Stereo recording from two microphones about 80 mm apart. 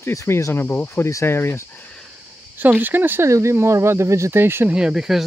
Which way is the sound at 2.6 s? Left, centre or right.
Right.